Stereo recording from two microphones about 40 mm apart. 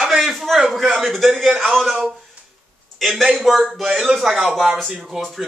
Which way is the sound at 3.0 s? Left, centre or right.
Centre.